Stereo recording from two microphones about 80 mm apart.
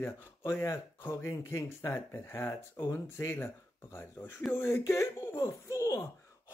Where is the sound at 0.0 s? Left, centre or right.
Left.